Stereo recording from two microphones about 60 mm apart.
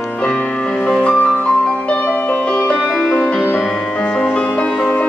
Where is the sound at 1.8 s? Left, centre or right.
Left.